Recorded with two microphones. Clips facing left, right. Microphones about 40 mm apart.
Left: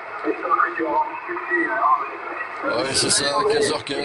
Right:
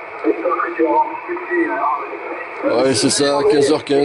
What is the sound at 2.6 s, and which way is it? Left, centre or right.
Speech, centre.